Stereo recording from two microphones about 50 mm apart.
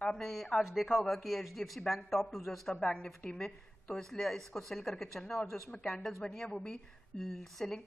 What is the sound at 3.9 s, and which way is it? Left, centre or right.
A woman's voice, centre.